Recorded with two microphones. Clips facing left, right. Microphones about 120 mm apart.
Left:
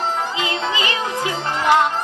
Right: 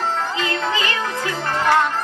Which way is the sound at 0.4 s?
15° left (ahead or behind).